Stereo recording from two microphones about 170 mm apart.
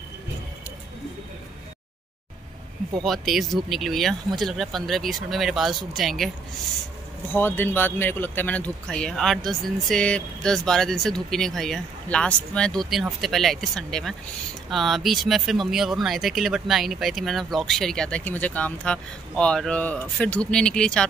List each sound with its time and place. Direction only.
3.0 s speech: centre (ahead or behind)
7.3 s speech: 10° left (ahead or behind)